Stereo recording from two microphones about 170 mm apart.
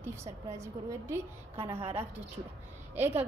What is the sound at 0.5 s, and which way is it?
Speech, 15° right (ahead or behind).